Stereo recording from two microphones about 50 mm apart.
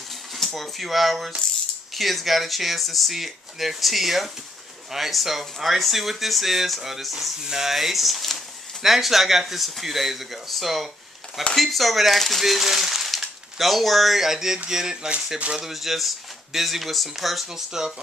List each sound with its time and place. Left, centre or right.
0.1 s speech: centre; by 15.6 s right
15.6 s speech: centre